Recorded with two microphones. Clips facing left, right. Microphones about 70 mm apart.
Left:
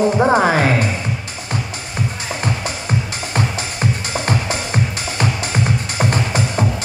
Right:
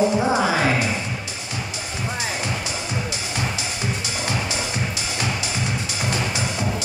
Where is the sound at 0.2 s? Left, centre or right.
Left.